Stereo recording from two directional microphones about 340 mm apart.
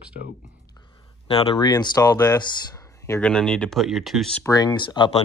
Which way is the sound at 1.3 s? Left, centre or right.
Centre.